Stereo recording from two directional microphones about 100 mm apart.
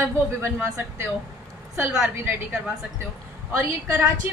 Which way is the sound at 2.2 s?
15° right (ahead or behind).